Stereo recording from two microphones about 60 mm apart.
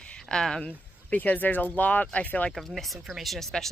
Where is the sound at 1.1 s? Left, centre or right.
Left.